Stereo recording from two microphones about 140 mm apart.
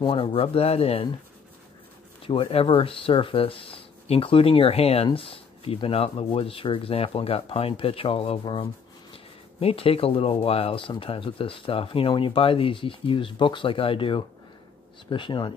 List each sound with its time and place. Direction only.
0.0 s speech: 40° left (ahead or behind)
2.2 s speech: 40° left (ahead or behind)